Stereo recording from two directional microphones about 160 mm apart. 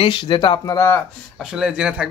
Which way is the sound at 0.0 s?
30° left (ahead or behind).